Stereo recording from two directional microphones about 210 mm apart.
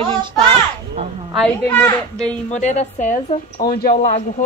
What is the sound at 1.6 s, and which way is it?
Speech, 10° left (ahead or behind).